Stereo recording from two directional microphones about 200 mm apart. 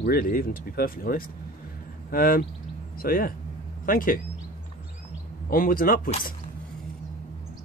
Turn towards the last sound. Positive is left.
turn(degrees=45)  # may be behind; listen again after turning